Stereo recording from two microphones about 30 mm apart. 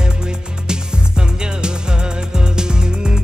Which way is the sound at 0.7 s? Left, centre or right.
Right.